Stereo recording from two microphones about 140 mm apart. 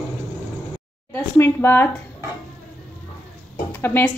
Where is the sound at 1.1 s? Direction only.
15° left (ahead or behind).